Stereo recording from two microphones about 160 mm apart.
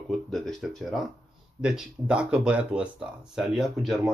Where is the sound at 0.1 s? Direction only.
Centre (ahead or behind).